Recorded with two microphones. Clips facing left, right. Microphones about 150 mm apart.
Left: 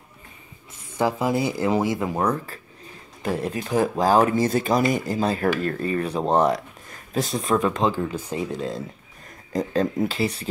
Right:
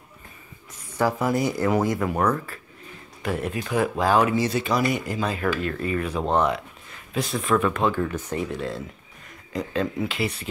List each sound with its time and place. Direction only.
0.9 s speech: 25° left (ahead or behind)
2.2 s speech: 35° left (ahead or behind)
7.9 s speech: 15° left (ahead or behind)
9.5 s speech: 40° left (ahead or behind)